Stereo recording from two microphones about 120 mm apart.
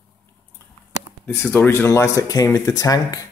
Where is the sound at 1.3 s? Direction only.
15° left (ahead or behind).